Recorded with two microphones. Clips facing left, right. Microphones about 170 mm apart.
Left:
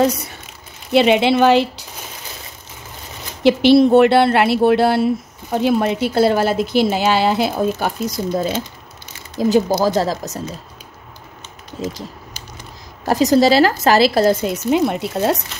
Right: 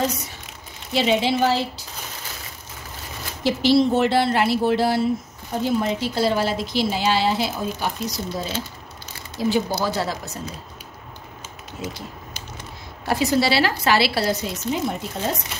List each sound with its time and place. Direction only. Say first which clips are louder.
0.9 s speech: left 7 dB; 70° left (ahead or behind)
3.4 s speech: left 7 dB; 65° left (ahead or behind)
9.4 s a woman's voice: left 7 dB; 45° left (ahead or behind)
13.0 s a woman's voice: left 7 dB; 40° left (ahead or behind)
14.7 s speech: left 8 dB; 75° left (ahead or behind)